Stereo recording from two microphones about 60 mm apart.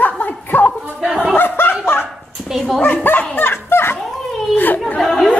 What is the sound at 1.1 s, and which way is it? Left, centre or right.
Chuckle, centre.